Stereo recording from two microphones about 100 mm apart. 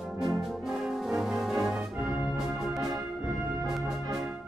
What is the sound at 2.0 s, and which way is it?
Music, 40° left (ahead or behind).